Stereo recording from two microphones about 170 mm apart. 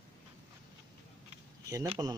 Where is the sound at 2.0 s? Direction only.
20° right (ahead or behind).